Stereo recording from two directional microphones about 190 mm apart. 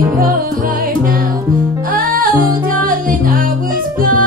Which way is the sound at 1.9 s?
50° right (ahead or behind).